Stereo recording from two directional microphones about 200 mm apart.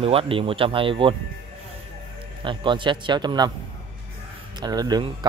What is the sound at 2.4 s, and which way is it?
A man's voice, 25° right (ahead or behind).